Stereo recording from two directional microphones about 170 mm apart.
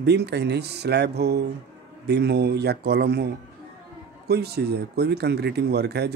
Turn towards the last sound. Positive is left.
turn(degrees=-75)  # may be behind; listen again after turning